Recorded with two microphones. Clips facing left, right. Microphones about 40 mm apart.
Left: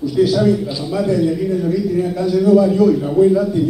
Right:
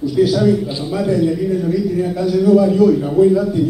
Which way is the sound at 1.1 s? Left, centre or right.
Centre.